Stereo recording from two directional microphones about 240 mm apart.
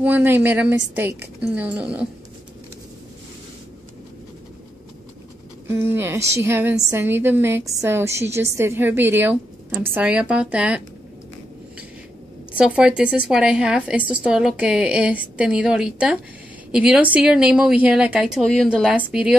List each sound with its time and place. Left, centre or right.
0.0 s a woman's voice: centre
5.7 s a woman's voice: centre
12.5 s a woman's voice: centre